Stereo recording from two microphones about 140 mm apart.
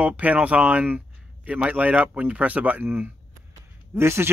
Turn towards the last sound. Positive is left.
turn(degrees=-15)  # may be behind; listen again after turning